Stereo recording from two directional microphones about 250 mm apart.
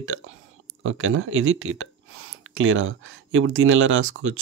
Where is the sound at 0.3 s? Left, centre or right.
Right.